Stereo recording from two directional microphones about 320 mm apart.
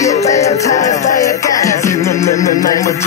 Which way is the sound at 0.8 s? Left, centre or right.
Left.